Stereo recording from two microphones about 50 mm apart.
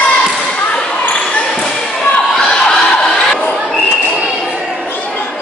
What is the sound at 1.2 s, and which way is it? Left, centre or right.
Basketball bounce, centre.